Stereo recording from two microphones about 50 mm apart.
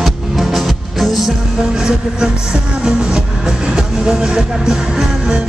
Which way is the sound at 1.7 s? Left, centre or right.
Centre.